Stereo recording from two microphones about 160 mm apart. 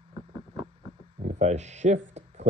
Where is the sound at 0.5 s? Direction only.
35° right (ahead or behind).